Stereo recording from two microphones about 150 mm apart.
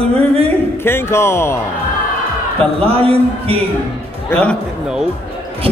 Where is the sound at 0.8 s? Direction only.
15° left (ahead or behind).